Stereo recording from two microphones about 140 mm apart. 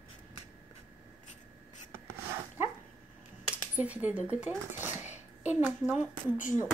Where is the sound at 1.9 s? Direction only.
20° right (ahead or behind).